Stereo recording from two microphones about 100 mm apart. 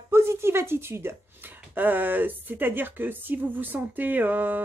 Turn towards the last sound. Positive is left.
turn(degrees=-20)  # may be behind; listen again after turning